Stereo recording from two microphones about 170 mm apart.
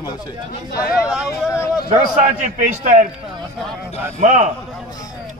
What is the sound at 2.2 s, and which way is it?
Speech, 50° right (ahead or behind).